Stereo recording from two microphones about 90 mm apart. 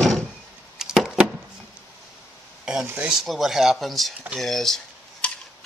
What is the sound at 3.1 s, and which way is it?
Speech, 5° right (ahead or behind).